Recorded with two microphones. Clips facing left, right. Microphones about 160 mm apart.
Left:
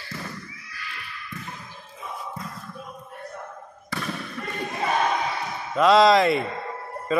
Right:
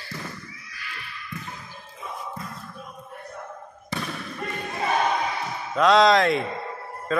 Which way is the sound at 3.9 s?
20° right (ahead or behind).